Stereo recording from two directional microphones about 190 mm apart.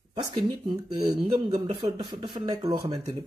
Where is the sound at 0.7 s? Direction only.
30° right (ahead or behind).